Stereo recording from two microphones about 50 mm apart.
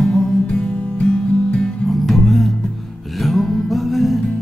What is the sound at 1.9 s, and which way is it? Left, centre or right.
Music, centre.